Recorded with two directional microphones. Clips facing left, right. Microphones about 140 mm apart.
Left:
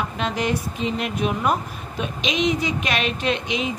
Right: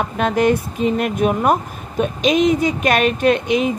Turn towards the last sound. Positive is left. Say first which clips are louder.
# right 8 dB
turn(degrees=-50)  # may be behind; listen again after turning